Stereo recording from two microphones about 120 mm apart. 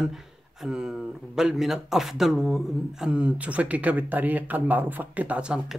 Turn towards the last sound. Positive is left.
turn(degrees=-5)  # may be behind; listen again after turning